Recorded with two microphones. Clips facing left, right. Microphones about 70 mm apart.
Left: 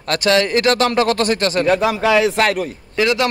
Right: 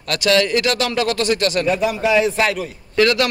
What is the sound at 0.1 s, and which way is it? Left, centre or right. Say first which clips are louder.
Speech: left 1 dB; left.